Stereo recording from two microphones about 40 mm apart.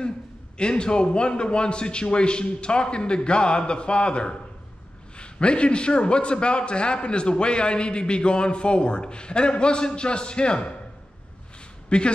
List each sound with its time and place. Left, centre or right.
0.6 s a man's voice: left
11.9 s a man's voice: left